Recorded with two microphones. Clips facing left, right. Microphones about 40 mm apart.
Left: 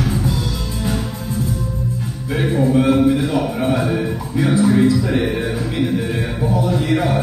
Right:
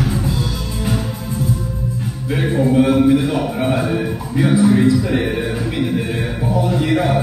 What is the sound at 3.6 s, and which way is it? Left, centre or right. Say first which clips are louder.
Music: right 1 dB; centre.